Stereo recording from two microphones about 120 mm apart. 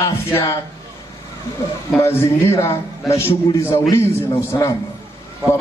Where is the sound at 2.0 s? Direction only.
20° left (ahead or behind).